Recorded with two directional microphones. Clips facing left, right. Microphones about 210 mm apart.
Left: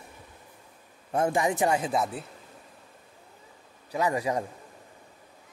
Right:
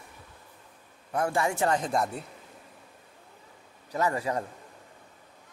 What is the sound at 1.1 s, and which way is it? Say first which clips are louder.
Speech: left 2 dB; 20° left (ahead or behind).